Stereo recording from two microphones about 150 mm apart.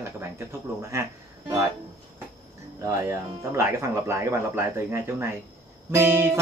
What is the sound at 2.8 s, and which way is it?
Speech, 20° right (ahead or behind).